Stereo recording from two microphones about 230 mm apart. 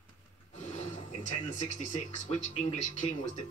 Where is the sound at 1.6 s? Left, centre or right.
Left.